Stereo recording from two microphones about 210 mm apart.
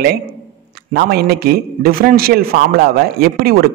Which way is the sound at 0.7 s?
45° right (ahead or behind).